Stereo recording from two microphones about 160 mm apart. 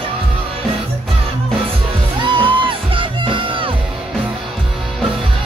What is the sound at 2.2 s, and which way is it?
Music, 30° right (ahead or behind).